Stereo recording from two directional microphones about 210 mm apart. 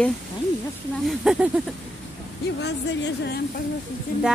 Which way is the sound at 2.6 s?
55° left (ahead or behind).